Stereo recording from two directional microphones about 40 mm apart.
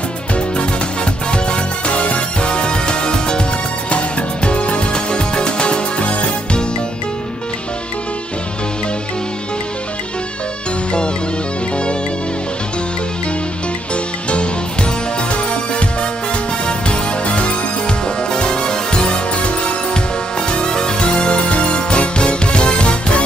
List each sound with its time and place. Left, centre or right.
1.3 s music: left
11.7 s music: left
14.3 s music: left